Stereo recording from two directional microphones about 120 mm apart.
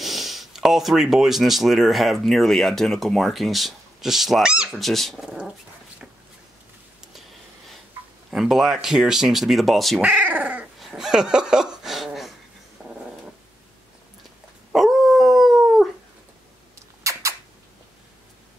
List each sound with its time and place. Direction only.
0.0 s speech: centre (ahead or behind)
8.3 s speech: centre (ahead or behind)
10.0 s dog: 10° right (ahead or behind)
14.7 s dog: centre (ahead or behind)
17.0 s a sound: 25° right (ahead or behind)